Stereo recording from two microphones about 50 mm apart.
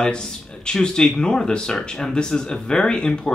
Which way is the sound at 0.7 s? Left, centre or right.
Centre.